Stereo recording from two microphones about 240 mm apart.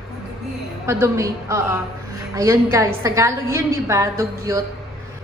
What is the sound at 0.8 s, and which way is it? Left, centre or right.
A woman's voice, centre.